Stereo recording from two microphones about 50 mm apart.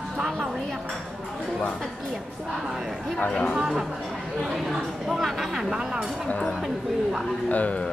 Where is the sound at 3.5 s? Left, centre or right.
Centre.